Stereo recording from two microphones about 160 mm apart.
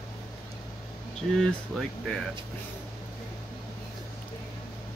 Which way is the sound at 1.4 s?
Centre (ahead or behind).